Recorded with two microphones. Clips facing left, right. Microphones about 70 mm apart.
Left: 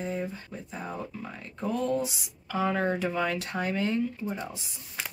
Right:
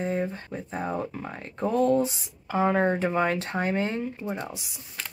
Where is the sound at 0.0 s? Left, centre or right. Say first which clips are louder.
Right 5 dB; right.